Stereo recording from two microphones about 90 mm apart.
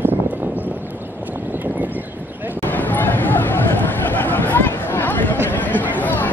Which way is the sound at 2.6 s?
20° left (ahead or behind).